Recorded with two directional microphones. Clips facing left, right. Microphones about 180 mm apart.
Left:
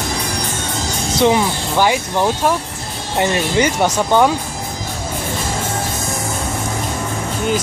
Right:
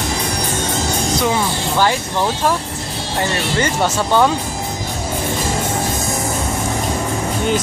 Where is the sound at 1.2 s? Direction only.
15° left (ahead or behind).